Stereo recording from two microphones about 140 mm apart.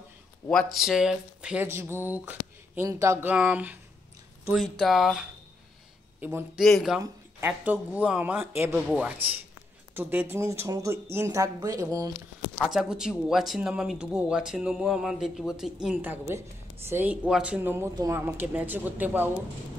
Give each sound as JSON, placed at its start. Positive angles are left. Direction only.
{"t": 0.7, "sound": "speech", "side_deg": -5}
{"t": 4.5, "sound": "speech", "side_deg": 0}
{"t": 6.2, "sound": "speech", "side_deg": -10}
{"t": 6.6, "sound": "speech", "side_deg": 0}
{"t": 7.0, "sound": "a woman's voice", "side_deg": -15}
{"t": 12.5, "sound": "speech", "side_deg": -5}